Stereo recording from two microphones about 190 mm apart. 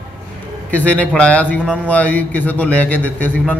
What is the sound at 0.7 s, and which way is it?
A man's voice, 10° left (ahead or behind).